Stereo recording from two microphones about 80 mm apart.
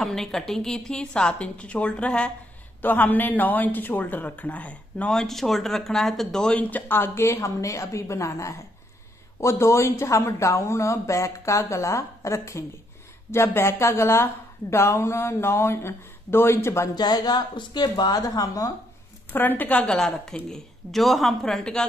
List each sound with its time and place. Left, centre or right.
0.0 s a woman's voice: centre
5.1 s speech: centre
6.6 s a woman's voice: left
16.9 s speech: left
19.3 s speech: left
20.0 s a woman's voice: centre